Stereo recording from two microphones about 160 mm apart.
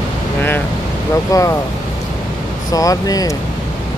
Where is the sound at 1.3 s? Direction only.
20° left (ahead or behind).